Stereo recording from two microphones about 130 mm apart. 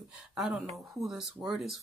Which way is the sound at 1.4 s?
Centre (ahead or behind).